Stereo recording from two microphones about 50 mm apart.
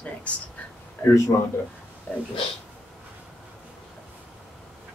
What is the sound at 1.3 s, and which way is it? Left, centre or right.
Speech, left.